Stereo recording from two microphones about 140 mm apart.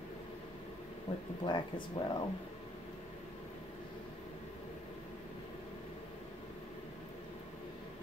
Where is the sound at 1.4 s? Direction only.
35° left (ahead or behind).